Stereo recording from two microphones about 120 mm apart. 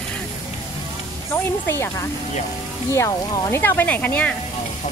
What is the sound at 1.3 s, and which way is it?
Speech, 20° left (ahead or behind).